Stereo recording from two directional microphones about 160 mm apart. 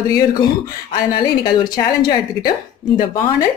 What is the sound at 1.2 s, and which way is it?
Speech, 25° left (ahead or behind).